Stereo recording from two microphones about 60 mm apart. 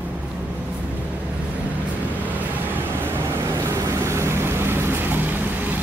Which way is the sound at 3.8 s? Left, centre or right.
Right.